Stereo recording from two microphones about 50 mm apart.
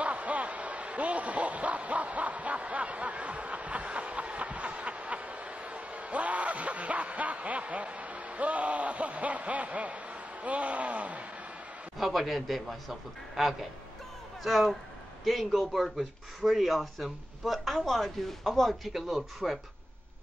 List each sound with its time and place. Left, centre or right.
0.0 s a man's voice: right
12.0 s speech: centre
18.9 s speech: centre